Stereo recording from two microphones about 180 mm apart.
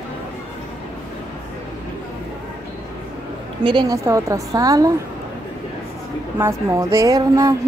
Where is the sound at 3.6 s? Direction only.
25° right (ahead or behind).